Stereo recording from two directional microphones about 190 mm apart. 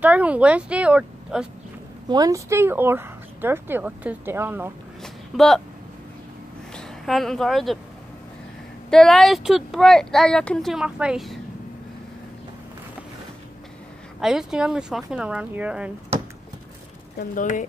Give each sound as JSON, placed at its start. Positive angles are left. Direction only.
{"t": 0.0, "sound": "speech", "side_deg": -5}
{"t": 2.0, "sound": "speech", "side_deg": -20}
{"t": 5.0, "sound": "a sound", "side_deg": 0}
{"t": 6.7, "sound": "a woman's voice", "side_deg": 0}
{"t": 8.9, "sound": "speech", "side_deg": 0}
{"t": 14.2, "sound": "speech", "side_deg": -5}
{"t": 17.4, "sound": "speech", "side_deg": 40}